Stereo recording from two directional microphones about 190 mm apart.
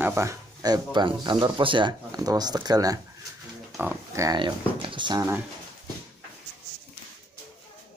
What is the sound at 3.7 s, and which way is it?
Speech, 10° right (ahead or behind).